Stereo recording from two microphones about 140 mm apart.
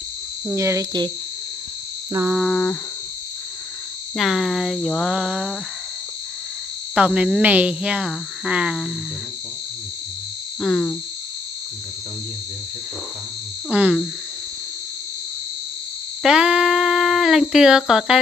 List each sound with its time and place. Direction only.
0.6 s speech: 20° right (ahead or behind)
2.3 s speech: centre (ahead or behind)
4.2 s speech: centre (ahead or behind)
7.0 s speech: 5° right (ahead or behind)
10.6 s speech: 5° left (ahead or behind)
13.7 s speech: 10° right (ahead or behind)
16.2 s speech: 5° right (ahead or behind)